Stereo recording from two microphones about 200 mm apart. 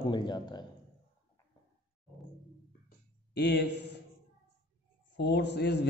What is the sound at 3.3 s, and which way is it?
Speech, 55° left (ahead or behind).